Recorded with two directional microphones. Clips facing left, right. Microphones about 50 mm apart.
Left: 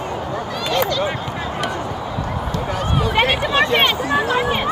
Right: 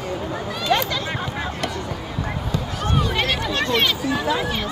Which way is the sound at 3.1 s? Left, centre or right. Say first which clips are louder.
Left 6 dB; left.